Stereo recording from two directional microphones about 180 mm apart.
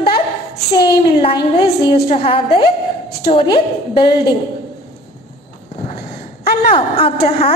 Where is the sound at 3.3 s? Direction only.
30° left (ahead or behind).